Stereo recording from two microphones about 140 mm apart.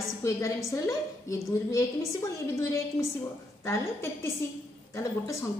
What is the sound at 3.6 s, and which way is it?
A woman's voice, 20° left (ahead or behind).